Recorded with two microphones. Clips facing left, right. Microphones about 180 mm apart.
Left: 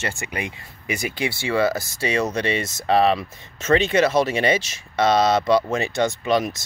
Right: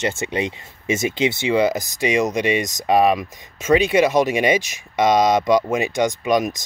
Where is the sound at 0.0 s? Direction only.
20° right (ahead or behind).